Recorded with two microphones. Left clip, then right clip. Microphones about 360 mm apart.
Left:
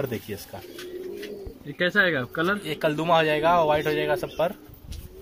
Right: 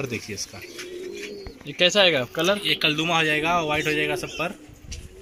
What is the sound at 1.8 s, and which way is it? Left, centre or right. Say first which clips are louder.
Speech: right 4 dB; centre.